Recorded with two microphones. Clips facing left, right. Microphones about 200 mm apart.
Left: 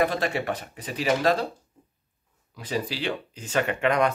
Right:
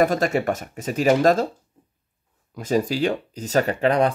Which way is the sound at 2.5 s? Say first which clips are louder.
Right 8 dB; 45° right (ahead or behind).